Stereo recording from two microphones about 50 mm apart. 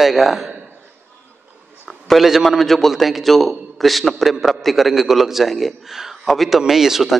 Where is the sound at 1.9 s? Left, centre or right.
Centre.